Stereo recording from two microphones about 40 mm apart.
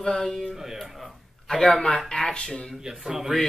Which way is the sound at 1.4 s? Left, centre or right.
Centre.